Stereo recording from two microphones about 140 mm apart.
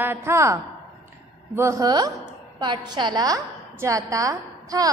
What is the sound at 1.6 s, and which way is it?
A woman's voice, 25° right (ahead or behind).